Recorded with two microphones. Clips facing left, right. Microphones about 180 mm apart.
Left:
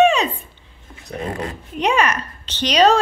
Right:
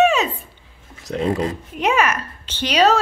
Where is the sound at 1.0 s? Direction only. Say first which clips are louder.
Right 5 dB; 90° right.